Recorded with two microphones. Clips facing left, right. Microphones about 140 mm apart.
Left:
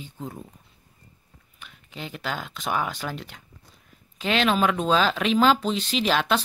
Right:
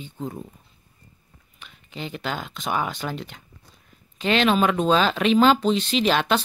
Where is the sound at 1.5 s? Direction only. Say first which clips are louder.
Right 3 dB; centre (ahead or behind).